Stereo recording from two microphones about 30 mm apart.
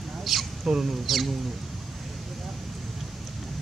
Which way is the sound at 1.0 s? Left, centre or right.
Centre.